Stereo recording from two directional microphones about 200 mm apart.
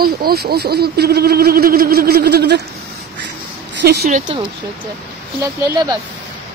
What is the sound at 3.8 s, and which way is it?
Speech, 55° right (ahead or behind).